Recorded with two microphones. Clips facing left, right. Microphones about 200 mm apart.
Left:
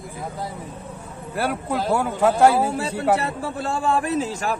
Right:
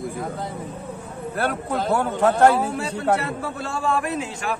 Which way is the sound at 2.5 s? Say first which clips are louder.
Left 2 dB; 30° left (ahead or behind).